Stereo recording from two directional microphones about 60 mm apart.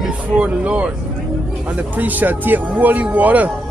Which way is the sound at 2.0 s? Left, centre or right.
Right.